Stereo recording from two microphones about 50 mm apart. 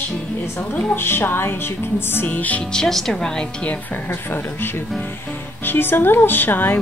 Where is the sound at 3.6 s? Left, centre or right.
Left.